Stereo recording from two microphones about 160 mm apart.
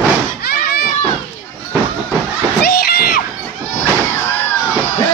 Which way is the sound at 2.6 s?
70° left (ahead or behind).